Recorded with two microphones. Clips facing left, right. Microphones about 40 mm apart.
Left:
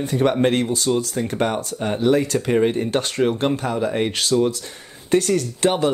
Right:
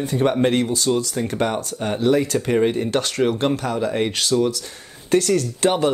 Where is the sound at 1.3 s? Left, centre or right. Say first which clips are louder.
Left 1 dB; left.